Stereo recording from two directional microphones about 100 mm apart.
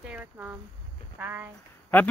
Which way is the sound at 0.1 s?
15° right (ahead or behind).